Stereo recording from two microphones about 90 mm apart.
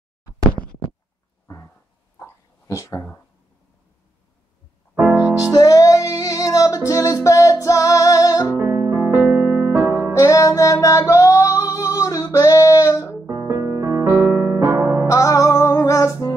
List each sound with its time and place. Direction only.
2.7 s speech: 35° left (ahead or behind)
5.1 s music: 10° right (ahead or behind)
5.5 s music: 40° left (ahead or behind)
8.5 s music: 30° right (ahead or behind)
10.1 s music: 35° left (ahead or behind)
13.3 s music: 30° right (ahead or behind)
15.0 s music: 35° left (ahead or behind)